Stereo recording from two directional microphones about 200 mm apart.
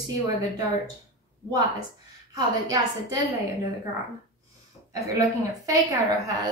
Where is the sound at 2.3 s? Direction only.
15° right (ahead or behind).